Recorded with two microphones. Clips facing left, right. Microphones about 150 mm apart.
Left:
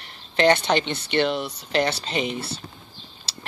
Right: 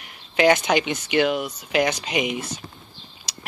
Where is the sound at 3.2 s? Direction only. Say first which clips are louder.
Even; 10° right (ahead or behind).